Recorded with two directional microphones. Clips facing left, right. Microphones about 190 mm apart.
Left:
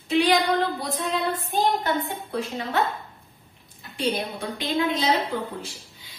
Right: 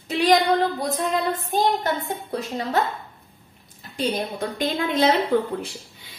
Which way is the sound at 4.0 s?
40° right (ahead or behind).